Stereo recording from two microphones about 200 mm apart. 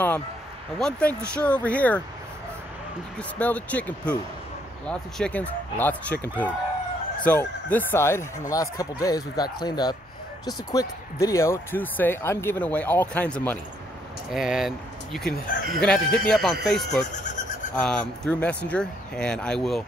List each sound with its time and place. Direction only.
0.7 s speech: 5° left (ahead or behind)
3.2 s speech: 5° left (ahead or behind)
14.3 s speech: centre (ahead or behind)
15.8 s speech: 5° left (ahead or behind)